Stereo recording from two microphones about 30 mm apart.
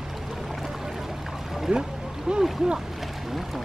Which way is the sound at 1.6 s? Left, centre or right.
Centre.